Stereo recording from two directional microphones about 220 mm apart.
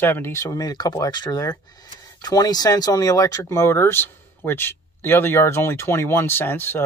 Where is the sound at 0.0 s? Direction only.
10° left (ahead or behind).